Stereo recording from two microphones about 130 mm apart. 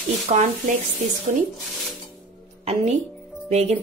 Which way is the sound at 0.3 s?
70° right (ahead or behind).